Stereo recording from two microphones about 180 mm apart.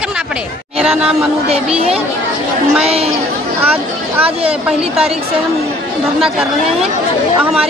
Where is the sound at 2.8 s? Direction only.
35° right (ahead or behind).